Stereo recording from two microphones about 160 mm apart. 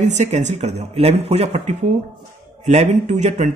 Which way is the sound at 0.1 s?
45° right (ahead or behind).